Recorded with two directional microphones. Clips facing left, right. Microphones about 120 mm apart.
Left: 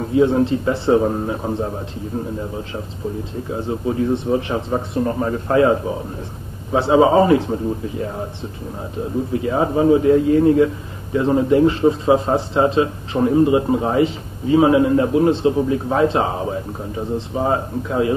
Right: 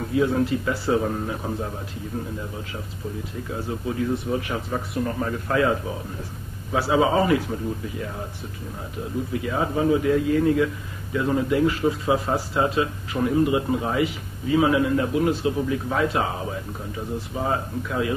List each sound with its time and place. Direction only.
0.1 s a man's voice: 25° left (ahead or behind)
3.4 s a man's voice: 30° left (ahead or behind)
9.3 s a man's voice: 30° left (ahead or behind)